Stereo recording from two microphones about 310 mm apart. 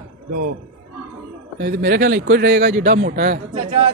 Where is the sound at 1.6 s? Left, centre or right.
Right.